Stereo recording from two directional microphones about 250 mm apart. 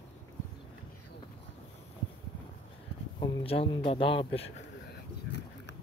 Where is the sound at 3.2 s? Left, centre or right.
Centre.